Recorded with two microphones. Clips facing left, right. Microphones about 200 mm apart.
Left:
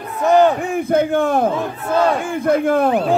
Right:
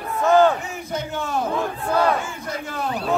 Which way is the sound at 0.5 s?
55° left (ahead or behind).